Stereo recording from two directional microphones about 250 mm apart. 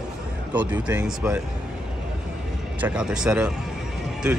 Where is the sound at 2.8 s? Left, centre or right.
Centre.